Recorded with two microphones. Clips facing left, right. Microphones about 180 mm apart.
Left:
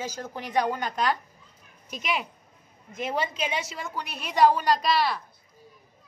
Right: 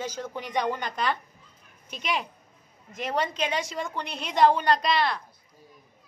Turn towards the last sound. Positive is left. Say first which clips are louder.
# even
turn(degrees=5)  # may be behind; listen again after turning